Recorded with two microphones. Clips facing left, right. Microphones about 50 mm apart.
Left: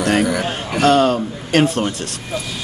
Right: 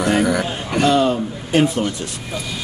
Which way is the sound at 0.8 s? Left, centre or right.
Left.